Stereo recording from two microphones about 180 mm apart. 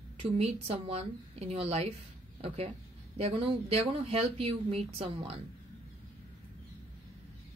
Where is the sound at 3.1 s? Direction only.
35° right (ahead or behind).